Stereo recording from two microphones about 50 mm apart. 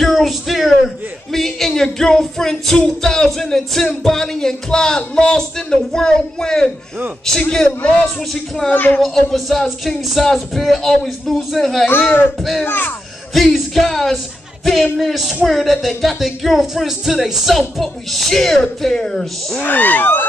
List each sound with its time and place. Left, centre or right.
0.0 s a sound: centre
3.0 s music: centre
7.4 s a man's voice: left
8.6 s speech: left
9.0 s speech: centre
12.6 s speech: left
13.3 s speech: centre
19.6 s speech: left